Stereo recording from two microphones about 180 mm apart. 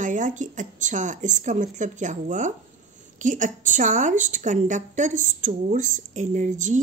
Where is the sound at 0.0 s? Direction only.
45° right (ahead or behind).